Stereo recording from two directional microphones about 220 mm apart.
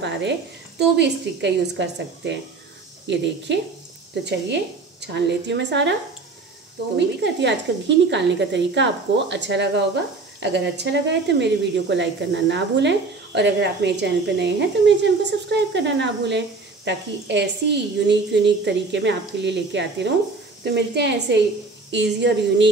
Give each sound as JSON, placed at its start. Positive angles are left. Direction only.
{"t": 0.0, "sound": "speech", "side_deg": -55}
{"t": 7.0, "sound": "speech", "side_deg": -50}